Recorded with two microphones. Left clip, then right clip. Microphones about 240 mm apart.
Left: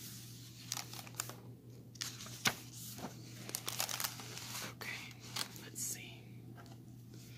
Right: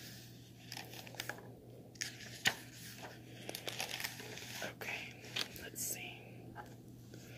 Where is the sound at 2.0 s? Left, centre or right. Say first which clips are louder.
Even; centre.